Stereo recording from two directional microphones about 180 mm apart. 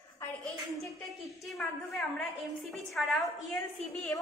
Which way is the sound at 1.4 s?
Centre (ahead or behind).